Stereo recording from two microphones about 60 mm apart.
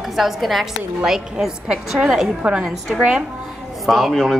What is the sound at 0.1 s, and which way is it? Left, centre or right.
A woman's voice, centre.